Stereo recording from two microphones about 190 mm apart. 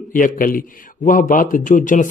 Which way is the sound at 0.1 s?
45° left (ahead or behind).